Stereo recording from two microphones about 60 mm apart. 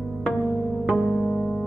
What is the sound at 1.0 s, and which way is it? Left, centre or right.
Music, centre.